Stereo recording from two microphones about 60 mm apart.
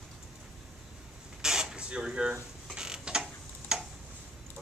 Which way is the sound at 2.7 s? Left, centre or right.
Centre.